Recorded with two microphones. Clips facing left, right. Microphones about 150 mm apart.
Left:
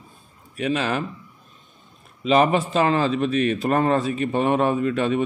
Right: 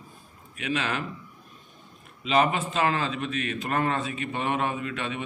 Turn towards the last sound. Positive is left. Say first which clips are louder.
# left 11 dB
turn(degrees=40)  # may be behind; listen again after turning